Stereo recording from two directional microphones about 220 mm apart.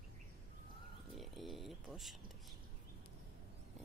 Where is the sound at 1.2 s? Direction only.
Centre (ahead or behind).